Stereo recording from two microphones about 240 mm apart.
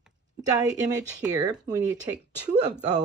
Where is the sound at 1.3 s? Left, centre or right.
Centre.